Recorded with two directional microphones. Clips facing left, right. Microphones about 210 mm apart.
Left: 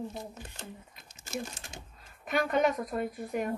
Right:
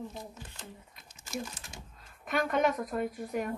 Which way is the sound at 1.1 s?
65° left (ahead or behind).